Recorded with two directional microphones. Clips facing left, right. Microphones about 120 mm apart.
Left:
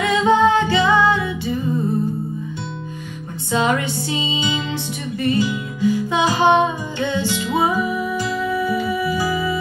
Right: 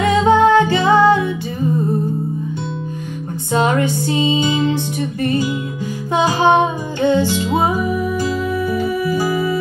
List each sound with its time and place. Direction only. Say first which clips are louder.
0.0 s music: right 3 dB; 45° right (ahead or behind)
3.5 s music: right 3 dB; 45° right (ahead or behind)